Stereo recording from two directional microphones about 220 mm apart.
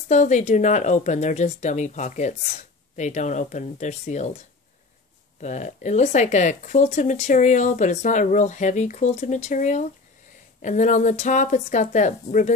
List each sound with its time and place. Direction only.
0.1 s speech: 35° left (ahead or behind)
5.4 s speech: 35° left (ahead or behind)